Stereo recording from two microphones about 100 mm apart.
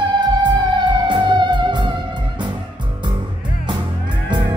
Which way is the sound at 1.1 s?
50° right (ahead or behind).